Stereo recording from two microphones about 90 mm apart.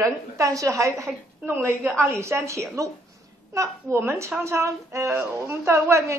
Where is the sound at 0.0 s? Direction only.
40° right (ahead or behind).